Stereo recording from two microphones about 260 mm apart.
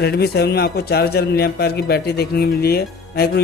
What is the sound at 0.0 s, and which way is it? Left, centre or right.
A man's voice, left.